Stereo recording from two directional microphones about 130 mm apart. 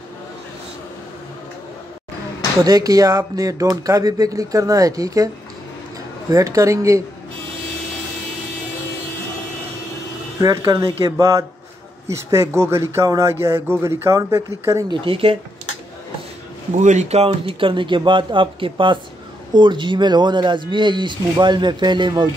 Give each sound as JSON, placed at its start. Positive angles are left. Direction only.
{"t": 2.6, "sound": "speech", "side_deg": -30}
{"t": 6.3, "sound": "speech", "side_deg": -25}
{"t": 10.4, "sound": "speech", "side_deg": -25}
{"t": 14.9, "sound": "speech", "side_deg": -45}
{"t": 16.7, "sound": "speech", "side_deg": -65}